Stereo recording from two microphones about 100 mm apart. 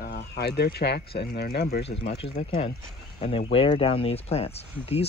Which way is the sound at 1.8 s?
80° left.